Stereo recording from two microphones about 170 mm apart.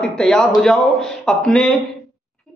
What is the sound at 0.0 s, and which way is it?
A man's voice, 5° left (ahead or behind).